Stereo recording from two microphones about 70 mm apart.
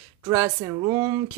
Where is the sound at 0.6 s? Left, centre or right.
Right.